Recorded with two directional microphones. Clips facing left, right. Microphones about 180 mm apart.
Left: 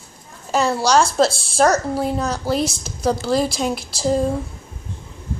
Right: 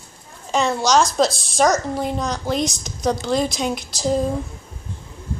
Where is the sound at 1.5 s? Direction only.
5° left (ahead or behind).